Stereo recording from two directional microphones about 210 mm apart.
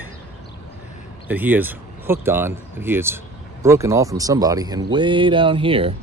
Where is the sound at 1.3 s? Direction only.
10° right (ahead or behind).